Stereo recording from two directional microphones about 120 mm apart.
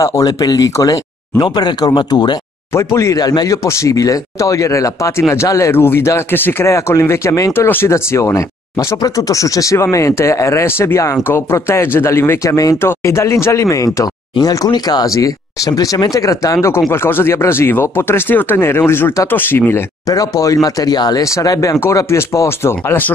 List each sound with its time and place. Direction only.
0.0 s speech: 30° left (ahead or behind)
2.7 s speech: 25° left (ahead or behind)
20.1 s speech: 30° left (ahead or behind)